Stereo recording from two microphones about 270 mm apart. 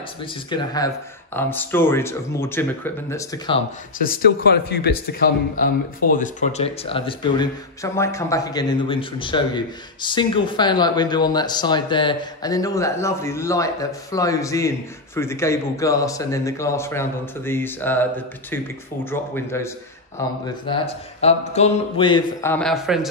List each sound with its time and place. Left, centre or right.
0.5 s speech: centre
4.0 s a man's voice: left; by 23.0 s centre